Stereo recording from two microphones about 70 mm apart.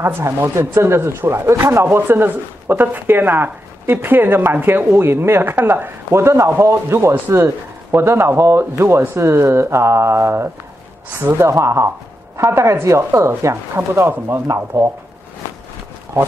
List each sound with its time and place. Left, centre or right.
0.0 s a man's voice: right
5.9 s a man's voice: right